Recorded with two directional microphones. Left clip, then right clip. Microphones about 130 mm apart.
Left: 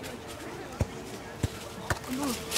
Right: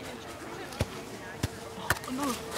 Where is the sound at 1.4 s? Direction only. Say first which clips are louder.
Right 1 dB; 40° right (ahead or behind).